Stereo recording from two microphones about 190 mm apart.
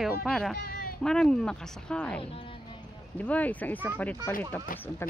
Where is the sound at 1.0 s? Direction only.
5° left (ahead or behind).